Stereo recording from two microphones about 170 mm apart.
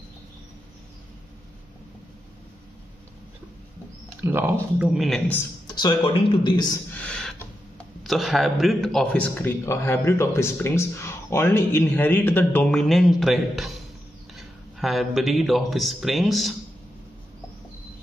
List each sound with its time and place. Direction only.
4.2 s speech: 15° right (ahead or behind)
5.7 s speech: 25° left (ahead or behind)
6.9 s a sound: 10° left (ahead or behind)
8.0 s a man's voice: centre (ahead or behind)